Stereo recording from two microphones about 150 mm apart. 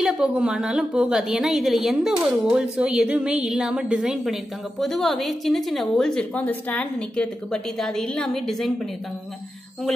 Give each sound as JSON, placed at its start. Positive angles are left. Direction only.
{"t": 0.0, "sound": "a woman's voice", "side_deg": -5}